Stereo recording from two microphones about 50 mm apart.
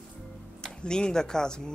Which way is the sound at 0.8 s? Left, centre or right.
Centre.